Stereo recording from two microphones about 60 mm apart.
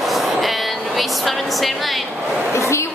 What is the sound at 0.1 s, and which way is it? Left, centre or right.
Vehicle, centre.